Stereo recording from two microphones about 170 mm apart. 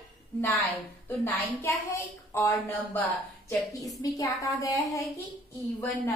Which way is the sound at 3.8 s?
Centre (ahead or behind).